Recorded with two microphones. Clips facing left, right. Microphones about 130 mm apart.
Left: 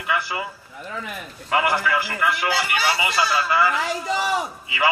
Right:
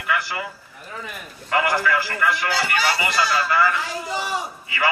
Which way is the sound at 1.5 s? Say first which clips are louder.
Even; 15° left (ahead or behind).